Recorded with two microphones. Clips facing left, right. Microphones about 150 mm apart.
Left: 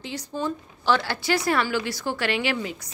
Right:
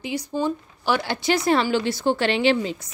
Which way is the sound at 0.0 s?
10° right (ahead or behind).